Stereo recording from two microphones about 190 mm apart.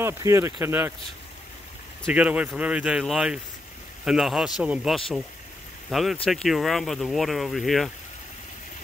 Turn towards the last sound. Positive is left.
turn(degrees=0)  # may be behind; listen again after turning